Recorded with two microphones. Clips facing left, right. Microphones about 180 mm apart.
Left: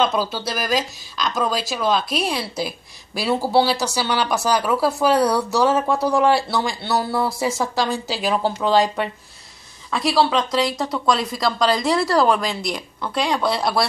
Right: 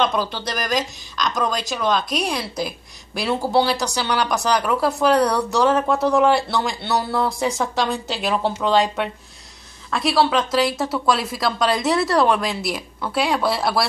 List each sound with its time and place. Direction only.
0.0 s speech: 5° left (ahead or behind)